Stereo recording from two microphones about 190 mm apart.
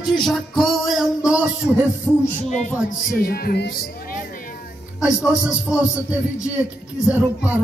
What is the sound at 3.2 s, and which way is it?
Speech, 50° left (ahead or behind).